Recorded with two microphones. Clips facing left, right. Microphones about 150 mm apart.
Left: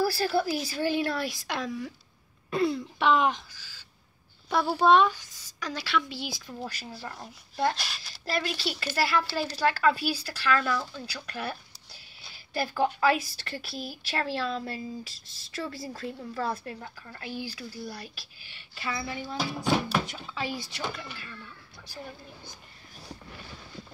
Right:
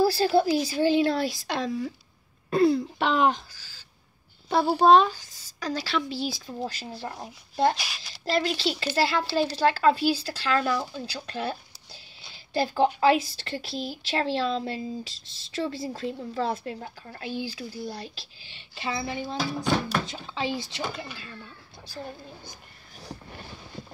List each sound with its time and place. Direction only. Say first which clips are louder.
0.0 s a woman's voice: right 5 dB; 25° right (ahead or behind)
7.7 s speech: right 2 dB; centre (ahead or behind)
8.3 s speech: right 5 dB; 25° right (ahead or behind)
19.3 s speech: even; 5° left (ahead or behind)
20.2 s speech: right 4 dB; 25° right (ahead or behind)